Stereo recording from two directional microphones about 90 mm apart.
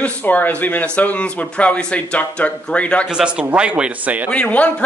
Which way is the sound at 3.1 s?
10° right (ahead or behind).